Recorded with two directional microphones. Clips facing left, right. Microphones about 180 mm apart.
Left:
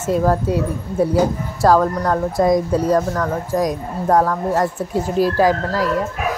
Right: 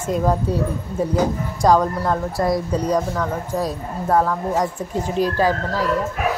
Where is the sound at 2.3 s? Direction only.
20° left (ahead or behind).